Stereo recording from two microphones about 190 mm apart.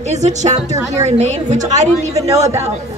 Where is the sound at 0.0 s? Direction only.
35° right (ahead or behind).